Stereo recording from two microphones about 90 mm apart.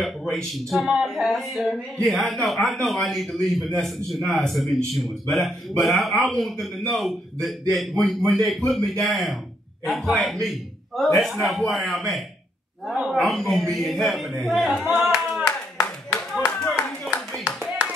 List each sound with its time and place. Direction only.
0.0 s a man's voice: 5° left (ahead or behind)
15.0 s clapping: 5° right (ahead or behind)
15.8 s clapping: 30° left (ahead or behind)
17.8 s clapping: 10° right (ahead or behind)